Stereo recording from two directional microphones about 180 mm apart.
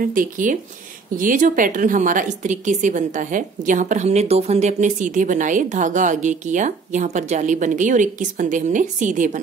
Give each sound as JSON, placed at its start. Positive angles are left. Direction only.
{"t": 0.0, "sound": "a woman's voice", "side_deg": -50}